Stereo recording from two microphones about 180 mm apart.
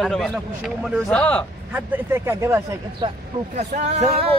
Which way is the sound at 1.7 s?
10° right (ahead or behind).